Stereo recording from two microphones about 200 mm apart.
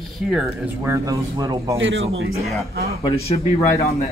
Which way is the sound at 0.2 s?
Centre (ahead or behind).